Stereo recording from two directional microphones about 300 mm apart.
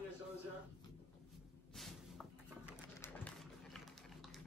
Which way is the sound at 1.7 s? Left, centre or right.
Centre.